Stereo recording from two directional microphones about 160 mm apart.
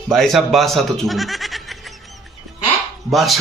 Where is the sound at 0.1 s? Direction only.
Centre (ahead or behind).